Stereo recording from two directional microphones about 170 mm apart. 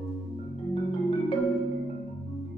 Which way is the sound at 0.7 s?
35° left (ahead or behind).